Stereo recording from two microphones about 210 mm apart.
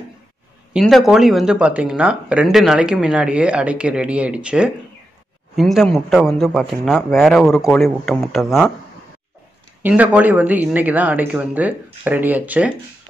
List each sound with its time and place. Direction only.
0.7 s speech: centre (ahead or behind)
9.8 s speech: 5° right (ahead or behind)